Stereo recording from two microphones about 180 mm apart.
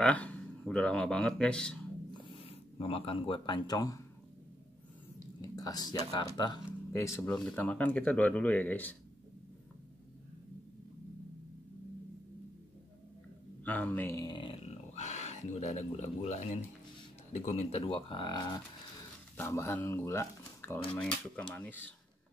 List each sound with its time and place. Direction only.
0.0 s speech: 5° left (ahead or behind)
2.2 s speech: 30° left (ahead or behind)
5.4 s speech: 20° left (ahead or behind)
13.7 s speech: 10° left (ahead or behind)